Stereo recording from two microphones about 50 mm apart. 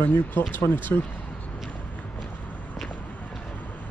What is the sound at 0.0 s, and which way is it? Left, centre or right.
Speech, left.